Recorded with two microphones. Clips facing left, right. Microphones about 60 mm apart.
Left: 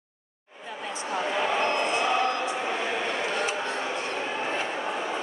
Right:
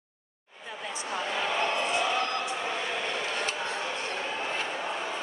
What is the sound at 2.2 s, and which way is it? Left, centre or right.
Choir, centre.